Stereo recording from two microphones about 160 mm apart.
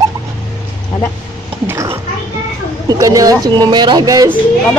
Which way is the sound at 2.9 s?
20° right (ahead or behind).